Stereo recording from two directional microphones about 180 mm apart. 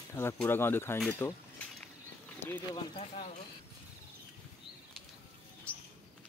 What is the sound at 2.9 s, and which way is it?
Speech, 35° left (ahead or behind).